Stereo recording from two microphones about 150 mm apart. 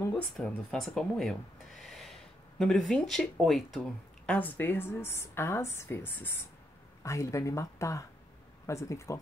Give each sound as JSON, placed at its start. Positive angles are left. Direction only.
{"t": 0.1, "sound": "speech", "side_deg": 10}
{"t": 1.8, "sound": "a sound", "side_deg": 0}
{"t": 2.6, "sound": "speech", "side_deg": 5}
{"t": 4.3, "sound": "a woman's voice", "side_deg": 10}